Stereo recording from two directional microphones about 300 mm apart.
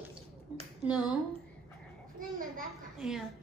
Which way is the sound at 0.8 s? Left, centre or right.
Centre.